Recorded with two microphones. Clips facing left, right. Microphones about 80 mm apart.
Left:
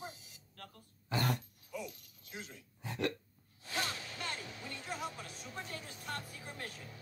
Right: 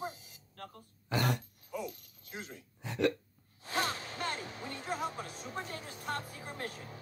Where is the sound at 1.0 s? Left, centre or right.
Right.